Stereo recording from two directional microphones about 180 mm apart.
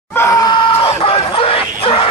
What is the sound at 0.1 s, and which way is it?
Screaming, 15° left (ahead or behind).